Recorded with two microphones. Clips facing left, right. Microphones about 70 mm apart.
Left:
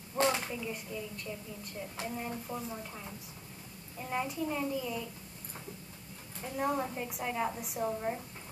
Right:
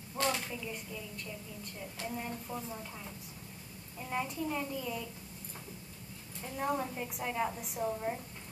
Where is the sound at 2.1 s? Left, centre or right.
Centre.